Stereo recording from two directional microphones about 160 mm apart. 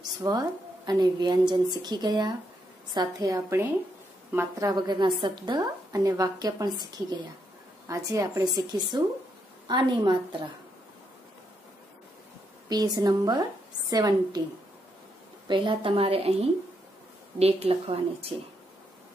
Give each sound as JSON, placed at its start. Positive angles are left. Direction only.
{"t": 0.0, "sound": "a woman's voice", "side_deg": -25}
{"t": 12.6, "sound": "a woman's voice", "side_deg": -25}
{"t": 15.4, "sound": "a woman's voice", "side_deg": -30}